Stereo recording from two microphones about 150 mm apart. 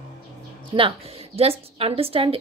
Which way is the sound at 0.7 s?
40° right (ahead or behind).